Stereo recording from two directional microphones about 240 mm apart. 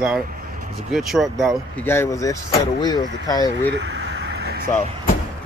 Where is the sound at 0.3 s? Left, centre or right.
Right.